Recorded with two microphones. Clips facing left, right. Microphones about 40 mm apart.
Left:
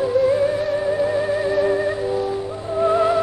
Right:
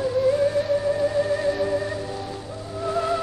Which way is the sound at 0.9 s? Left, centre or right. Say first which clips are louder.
Left 2 dB; left.